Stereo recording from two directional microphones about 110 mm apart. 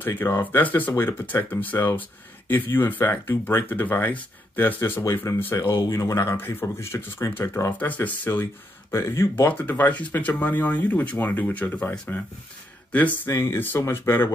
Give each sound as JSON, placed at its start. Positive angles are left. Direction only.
{"t": 0.0, "sound": "speech", "side_deg": 20}
{"t": 7.7, "sound": "speech", "side_deg": 15}